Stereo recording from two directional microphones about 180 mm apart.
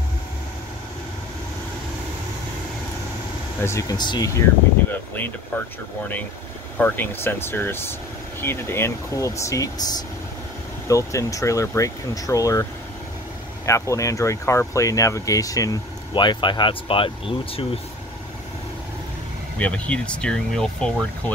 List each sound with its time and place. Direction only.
3.6 s speech: 20° left (ahead or behind)
6.8 s speech: 10° left (ahead or behind)
13.7 s speech: 15° left (ahead or behind)
19.6 s speech: 5° left (ahead or behind)